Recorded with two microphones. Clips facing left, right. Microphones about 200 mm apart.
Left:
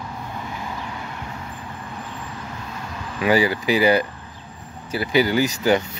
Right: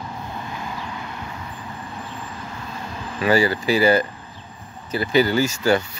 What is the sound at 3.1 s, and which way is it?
Speech, 15° left (ahead or behind).